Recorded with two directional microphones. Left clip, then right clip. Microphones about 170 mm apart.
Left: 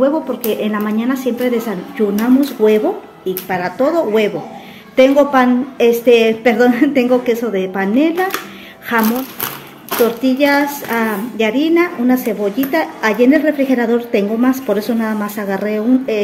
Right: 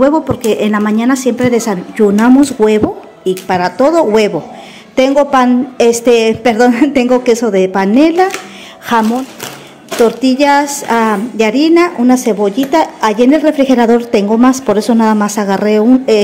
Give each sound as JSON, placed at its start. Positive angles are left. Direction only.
{"t": 0.0, "sound": "a woman's voice", "side_deg": -40}
{"t": 10.0, "sound": "a woman's voice", "side_deg": -35}